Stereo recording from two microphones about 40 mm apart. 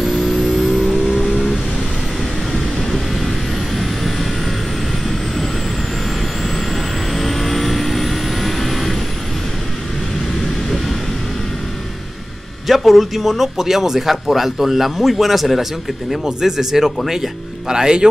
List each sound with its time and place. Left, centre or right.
0.0 s vehicle: centre
2.8 s vehicle: centre
6.7 s vehicle: centre
12.6 s a man's voice: centre